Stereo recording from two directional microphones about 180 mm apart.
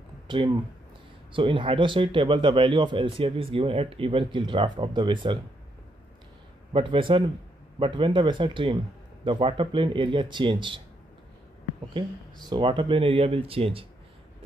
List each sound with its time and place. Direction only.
1.3 s a man's voice: 30° right (ahead or behind)
6.7 s a man's voice: 30° right (ahead or behind)
12.4 s speech: 25° right (ahead or behind)